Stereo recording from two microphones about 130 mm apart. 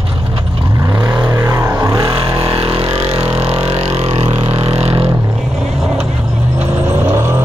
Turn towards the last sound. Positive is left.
turn(degrees=-20)  # may be behind; listen again after turning